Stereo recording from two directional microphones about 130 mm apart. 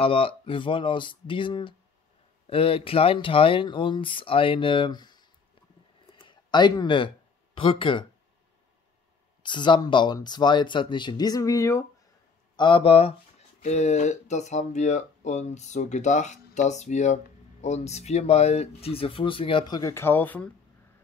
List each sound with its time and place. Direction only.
0.0 s speech: 45° left (ahead or behind)
6.1 s a sound: 35° left (ahead or behind)
7.5 s speech: 40° left (ahead or behind)
9.4 s speech: 35° left (ahead or behind)
12.5 s speech: 40° left (ahead or behind)
13.6 s speech: 60° left (ahead or behind); by 20.5 s 10° left (ahead or behind)